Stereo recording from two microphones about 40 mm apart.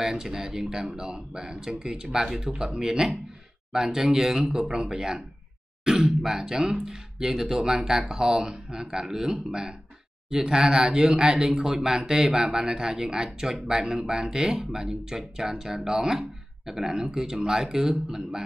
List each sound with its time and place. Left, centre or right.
0.0 s speech: centre